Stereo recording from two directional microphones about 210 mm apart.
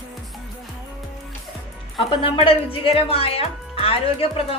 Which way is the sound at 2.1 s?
25° left (ahead or behind).